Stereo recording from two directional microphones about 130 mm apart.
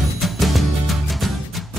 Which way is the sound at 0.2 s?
Centre (ahead or behind).